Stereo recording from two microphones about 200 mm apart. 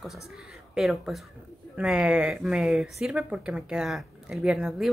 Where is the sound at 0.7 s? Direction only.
Centre (ahead or behind).